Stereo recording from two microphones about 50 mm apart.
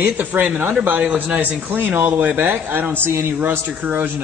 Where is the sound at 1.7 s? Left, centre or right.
Right.